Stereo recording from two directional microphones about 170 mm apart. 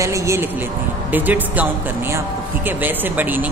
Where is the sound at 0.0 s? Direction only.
20° right (ahead or behind).